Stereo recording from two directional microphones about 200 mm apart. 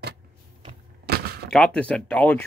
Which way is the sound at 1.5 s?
5° left (ahead or behind).